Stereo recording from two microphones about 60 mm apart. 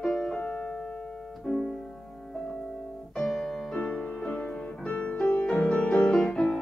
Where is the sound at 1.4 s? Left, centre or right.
Centre.